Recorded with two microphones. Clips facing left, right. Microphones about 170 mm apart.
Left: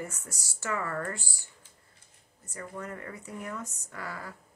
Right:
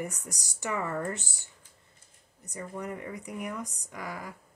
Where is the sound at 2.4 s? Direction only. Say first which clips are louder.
Right 2 dB; 15° right (ahead or behind).